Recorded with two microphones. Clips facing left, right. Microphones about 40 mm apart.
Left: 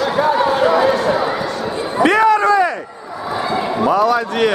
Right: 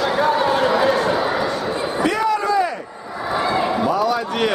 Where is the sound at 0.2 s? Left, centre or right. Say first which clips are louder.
Left 4 dB; centre.